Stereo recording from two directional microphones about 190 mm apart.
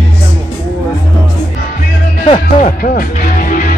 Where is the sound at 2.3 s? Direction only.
40° left (ahead or behind).